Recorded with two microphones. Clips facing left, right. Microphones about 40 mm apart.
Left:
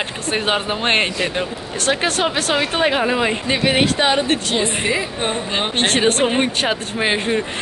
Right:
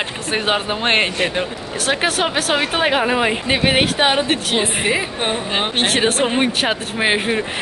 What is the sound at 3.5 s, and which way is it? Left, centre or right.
A woman's voice, right.